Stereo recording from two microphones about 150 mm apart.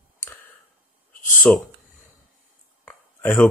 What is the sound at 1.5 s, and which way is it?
Speech, 10° left (ahead or behind).